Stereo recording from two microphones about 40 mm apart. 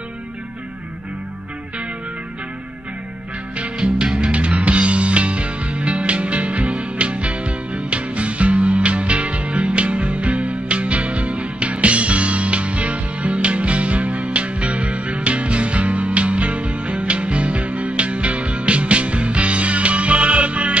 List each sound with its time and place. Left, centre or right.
3.8 s music: right
4.3 s music: right